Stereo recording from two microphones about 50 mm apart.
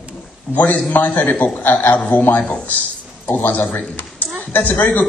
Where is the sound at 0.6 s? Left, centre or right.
Left.